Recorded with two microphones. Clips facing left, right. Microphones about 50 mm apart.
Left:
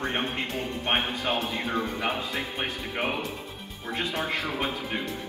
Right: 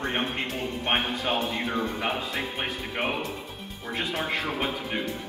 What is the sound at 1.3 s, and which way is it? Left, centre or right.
Speech, centre.